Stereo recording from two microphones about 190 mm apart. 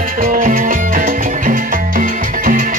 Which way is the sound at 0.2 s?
45° right (ahead or behind).